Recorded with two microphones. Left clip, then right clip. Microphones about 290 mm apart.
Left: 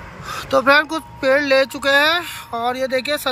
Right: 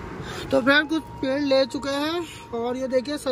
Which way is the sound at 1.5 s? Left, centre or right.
Left.